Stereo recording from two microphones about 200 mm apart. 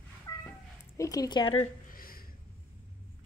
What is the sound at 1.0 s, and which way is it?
Speech, 20° left (ahead or behind).